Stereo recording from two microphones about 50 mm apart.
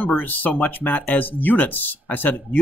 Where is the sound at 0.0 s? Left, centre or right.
Left.